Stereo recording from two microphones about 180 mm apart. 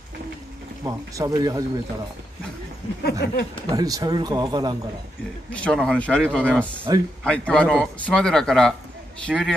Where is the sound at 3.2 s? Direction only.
65° left (ahead or behind).